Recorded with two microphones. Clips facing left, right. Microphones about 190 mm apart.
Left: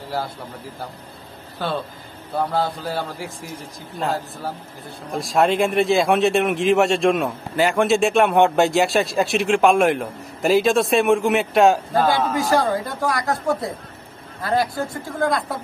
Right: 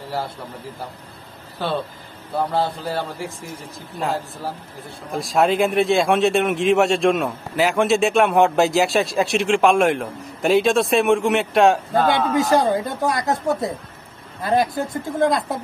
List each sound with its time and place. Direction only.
2.3 s speech: centre (ahead or behind)
5.1 s speech: centre (ahead or behind)
12.4 s speech: 20° right (ahead or behind)